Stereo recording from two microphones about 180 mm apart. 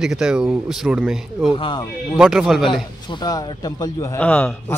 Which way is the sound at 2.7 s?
25° left (ahead or behind).